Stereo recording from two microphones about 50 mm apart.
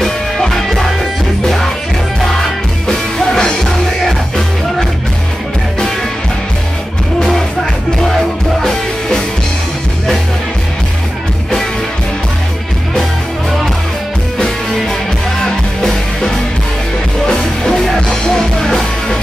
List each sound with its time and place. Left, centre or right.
0.0 s music: centre
2.9 s music: centre
8.1 s music: centre
14.4 s music: centre
17.3 s music: centre